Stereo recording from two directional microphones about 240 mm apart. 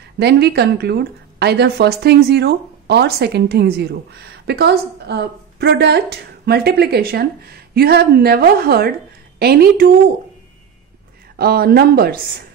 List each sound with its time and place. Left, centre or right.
0.2 s a woman's voice: right
11.3 s a woman's voice: right